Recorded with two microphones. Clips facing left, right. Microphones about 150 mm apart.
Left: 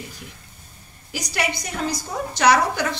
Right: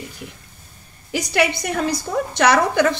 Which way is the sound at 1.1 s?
60° right (ahead or behind).